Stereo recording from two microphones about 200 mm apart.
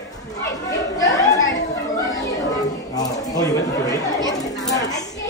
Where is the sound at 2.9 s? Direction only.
20° left (ahead or behind).